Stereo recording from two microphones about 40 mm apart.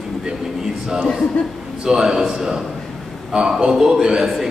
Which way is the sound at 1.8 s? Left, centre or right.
Centre.